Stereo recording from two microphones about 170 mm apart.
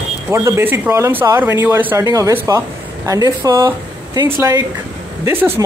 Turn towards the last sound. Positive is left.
turn(degrees=-15)  # may be behind; listen again after turning